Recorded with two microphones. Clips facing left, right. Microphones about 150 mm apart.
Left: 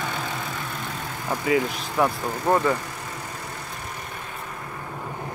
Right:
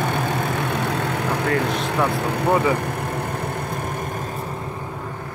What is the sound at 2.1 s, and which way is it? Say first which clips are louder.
Speech: right 3 dB; 70° right (ahead or behind).